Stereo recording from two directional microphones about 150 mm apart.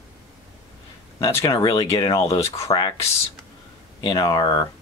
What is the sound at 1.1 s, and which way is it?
Speech, 20° left (ahead or behind).